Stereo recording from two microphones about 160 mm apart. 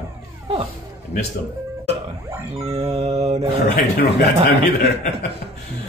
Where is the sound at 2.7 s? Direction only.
40° right (ahead or behind).